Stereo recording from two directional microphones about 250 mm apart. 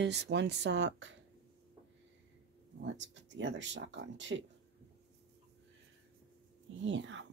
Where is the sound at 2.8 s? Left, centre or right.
Right.